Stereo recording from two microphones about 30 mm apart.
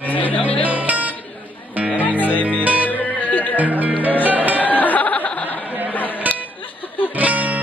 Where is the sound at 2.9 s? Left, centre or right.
Left.